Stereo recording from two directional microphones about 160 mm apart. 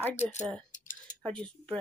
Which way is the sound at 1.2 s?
5° left (ahead or behind).